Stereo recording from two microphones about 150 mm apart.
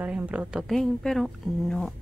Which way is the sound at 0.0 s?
10° right (ahead or behind).